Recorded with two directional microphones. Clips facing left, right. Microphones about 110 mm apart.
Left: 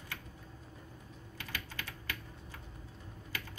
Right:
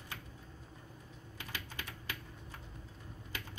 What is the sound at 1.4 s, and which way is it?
Typing, 20° right (ahead or behind).